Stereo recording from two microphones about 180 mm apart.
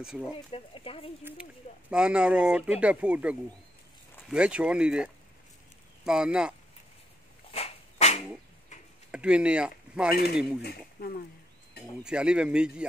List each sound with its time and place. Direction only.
0.0 s speech: 5° right (ahead or behind)
0.5 s speech: 30° left (ahead or behind)
1.2 s speech: 5° right (ahead or behind)
7.5 s dog: 35° left (ahead or behind)
9.1 s speech: 5° right (ahead or behind)
10.1 s speech: 60° left (ahead or behind)
12.0 s speech: 5° right (ahead or behind)